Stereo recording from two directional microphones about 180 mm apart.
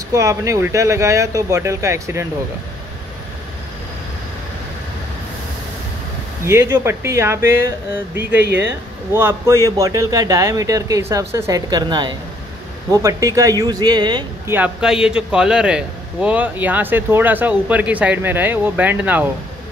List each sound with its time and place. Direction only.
0.1 s a man's voice: 15° right (ahead or behind)
6.4 s a man's voice: 15° right (ahead or behind)
8.4 s speech: 70° right (ahead or behind)
9.1 s speech: 15° right (ahead or behind)
14.5 s a man's voice: 5° right (ahead or behind)